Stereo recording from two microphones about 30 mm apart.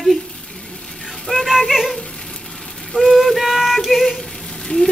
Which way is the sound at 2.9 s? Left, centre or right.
Left.